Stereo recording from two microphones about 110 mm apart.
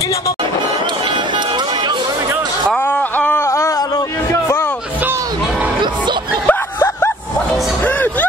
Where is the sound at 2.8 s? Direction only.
15° left (ahead or behind).